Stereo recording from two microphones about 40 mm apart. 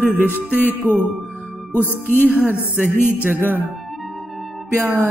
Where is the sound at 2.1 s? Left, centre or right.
Right.